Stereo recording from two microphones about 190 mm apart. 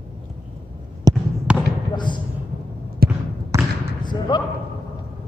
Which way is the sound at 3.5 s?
15° right (ahead or behind).